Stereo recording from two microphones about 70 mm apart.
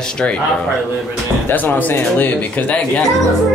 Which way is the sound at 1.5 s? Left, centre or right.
Left.